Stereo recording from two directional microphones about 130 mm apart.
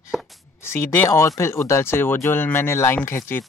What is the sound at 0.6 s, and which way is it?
Speech, 20° left (ahead or behind).